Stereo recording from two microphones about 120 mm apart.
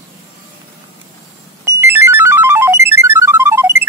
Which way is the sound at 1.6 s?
20° right (ahead or behind).